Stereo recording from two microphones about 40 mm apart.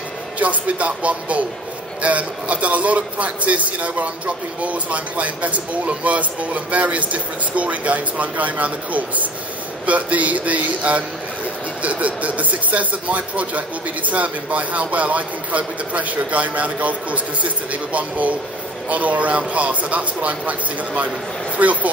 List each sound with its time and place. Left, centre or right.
0.4 s speech: right